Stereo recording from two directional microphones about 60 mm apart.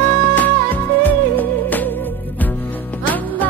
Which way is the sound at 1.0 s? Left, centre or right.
Left.